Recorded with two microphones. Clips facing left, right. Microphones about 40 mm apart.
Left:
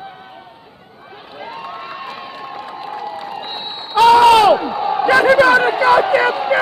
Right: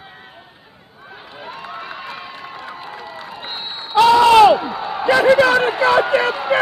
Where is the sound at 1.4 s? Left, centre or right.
Centre.